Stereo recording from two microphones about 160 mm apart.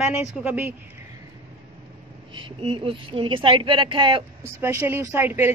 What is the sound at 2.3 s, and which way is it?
A woman's voice, 30° right (ahead or behind).